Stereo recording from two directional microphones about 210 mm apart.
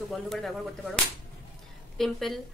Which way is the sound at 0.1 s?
Centre (ahead or behind).